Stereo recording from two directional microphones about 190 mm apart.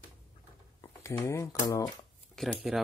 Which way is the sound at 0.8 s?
15° left (ahead or behind).